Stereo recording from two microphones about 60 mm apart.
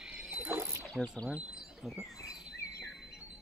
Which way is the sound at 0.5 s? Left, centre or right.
Right.